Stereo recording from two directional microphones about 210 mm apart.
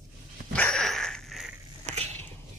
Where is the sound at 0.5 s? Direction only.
5° left (ahead or behind).